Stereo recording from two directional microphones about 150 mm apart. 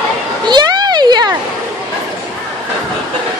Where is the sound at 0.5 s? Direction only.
30° right (ahead or behind).